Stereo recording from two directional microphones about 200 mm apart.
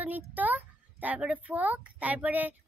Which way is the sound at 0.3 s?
10° right (ahead or behind).